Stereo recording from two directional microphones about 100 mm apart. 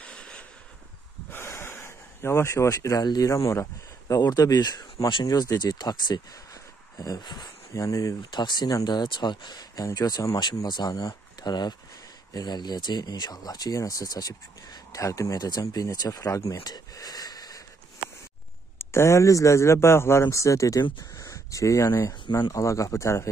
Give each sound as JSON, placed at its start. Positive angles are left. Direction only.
{"t": 0.0, "sound": "a sound", "side_deg": 10}
{"t": 1.3, "sound": "gasp", "side_deg": 25}
{"t": 4.1, "sound": "speech", "side_deg": 40}
{"t": 7.7, "sound": "speech", "side_deg": 35}
{"t": 8.3, "sound": "speech", "side_deg": 45}
{"t": 18.8, "sound": "speech", "side_deg": 25}
{"t": 22.2, "sound": "speech", "side_deg": 45}
{"t": 22.5, "sound": "speech", "side_deg": 30}